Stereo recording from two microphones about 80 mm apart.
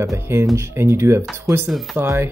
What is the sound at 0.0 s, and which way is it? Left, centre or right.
Speech, right.